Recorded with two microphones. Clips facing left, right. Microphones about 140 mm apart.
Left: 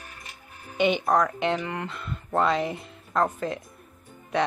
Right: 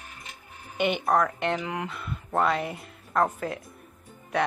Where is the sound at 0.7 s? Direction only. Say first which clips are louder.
Left 2 dB; 5° right (ahead or behind).